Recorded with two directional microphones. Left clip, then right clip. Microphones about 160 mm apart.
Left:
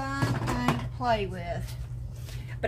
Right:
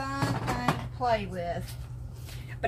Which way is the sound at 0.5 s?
80° left.